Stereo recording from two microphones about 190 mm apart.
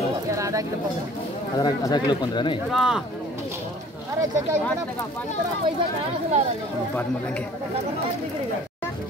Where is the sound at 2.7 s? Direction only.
5° right (ahead or behind).